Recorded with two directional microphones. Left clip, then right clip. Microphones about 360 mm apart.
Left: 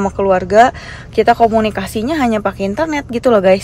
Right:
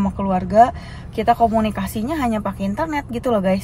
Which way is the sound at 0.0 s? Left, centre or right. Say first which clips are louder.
Left 9 dB; left.